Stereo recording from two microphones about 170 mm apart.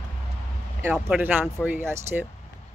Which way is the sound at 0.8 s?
10° right (ahead or behind).